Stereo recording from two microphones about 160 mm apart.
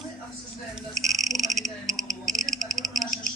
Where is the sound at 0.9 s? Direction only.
20° right (ahead or behind).